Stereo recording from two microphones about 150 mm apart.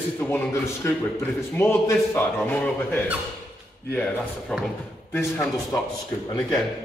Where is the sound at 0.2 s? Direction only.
15° left (ahead or behind).